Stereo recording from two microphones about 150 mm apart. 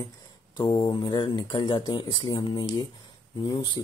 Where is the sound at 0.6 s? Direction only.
30° left (ahead or behind).